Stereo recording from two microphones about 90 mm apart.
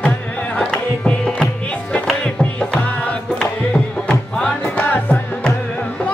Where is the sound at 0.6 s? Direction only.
10° left (ahead or behind).